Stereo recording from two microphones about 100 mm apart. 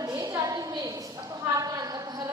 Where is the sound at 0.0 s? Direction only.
35° right (ahead or behind).